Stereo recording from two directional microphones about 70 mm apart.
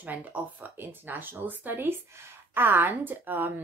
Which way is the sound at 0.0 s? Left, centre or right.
Right.